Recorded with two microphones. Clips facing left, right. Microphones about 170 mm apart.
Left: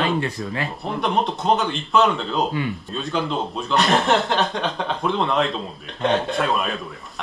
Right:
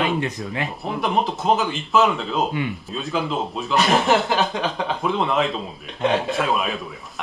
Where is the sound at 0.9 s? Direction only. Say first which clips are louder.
Even; centre (ahead or behind).